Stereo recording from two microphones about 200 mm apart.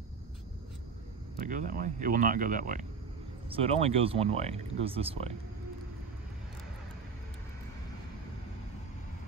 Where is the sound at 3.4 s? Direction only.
30° right (ahead or behind).